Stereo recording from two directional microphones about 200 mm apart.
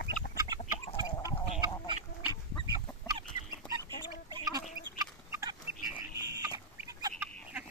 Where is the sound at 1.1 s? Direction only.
20° left (ahead or behind).